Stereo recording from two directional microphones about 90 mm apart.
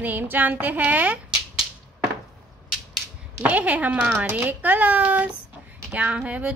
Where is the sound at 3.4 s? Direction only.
15° right (ahead or behind).